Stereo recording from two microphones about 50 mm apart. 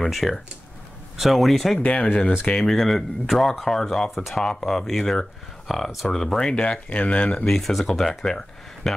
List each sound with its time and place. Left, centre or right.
0.0 s speech: centre
1.8 s speech: left
2.4 s speech: centre
7.4 s speech: centre